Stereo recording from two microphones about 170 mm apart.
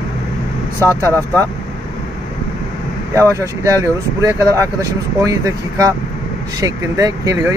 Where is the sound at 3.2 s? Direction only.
15° right (ahead or behind).